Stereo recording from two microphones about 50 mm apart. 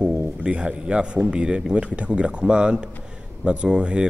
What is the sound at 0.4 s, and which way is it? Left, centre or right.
A man's voice, right.